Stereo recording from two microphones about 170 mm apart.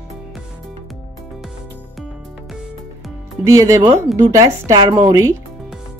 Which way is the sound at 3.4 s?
20° right (ahead or behind).